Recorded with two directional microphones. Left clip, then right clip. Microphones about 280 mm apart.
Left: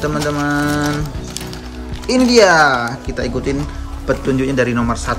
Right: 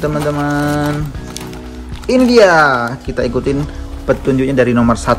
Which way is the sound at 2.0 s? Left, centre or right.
Centre.